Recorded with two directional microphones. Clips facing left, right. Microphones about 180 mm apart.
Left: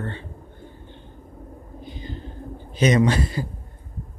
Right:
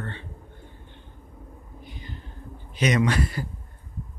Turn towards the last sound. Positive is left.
turn(degrees=25)  # may be behind; listen again after turning